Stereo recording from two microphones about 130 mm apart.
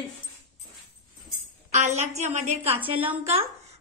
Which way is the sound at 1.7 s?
65° right (ahead or behind).